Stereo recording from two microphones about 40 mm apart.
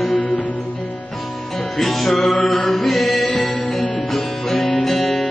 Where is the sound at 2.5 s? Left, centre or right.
Centre.